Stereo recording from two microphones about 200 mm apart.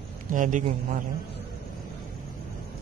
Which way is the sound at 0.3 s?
40° right (ahead or behind).